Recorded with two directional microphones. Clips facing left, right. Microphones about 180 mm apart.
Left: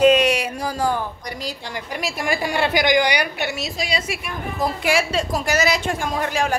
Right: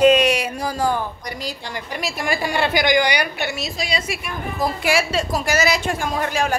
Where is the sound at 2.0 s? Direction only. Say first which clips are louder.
Even; 15° left (ahead or behind).